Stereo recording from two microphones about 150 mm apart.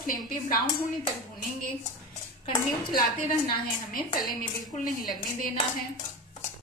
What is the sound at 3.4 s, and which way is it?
A woman's voice, 70° left (ahead or behind).